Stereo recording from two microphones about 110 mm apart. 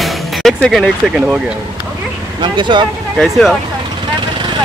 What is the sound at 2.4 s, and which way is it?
Speech, 45° right (ahead or behind).